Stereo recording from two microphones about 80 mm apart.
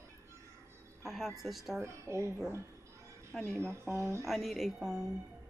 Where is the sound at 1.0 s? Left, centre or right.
Centre.